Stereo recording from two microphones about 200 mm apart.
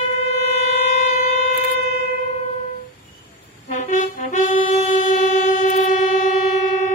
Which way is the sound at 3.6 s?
40° left (ahead or behind).